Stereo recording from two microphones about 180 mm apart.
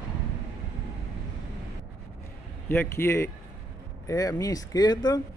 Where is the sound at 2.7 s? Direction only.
15° left (ahead or behind).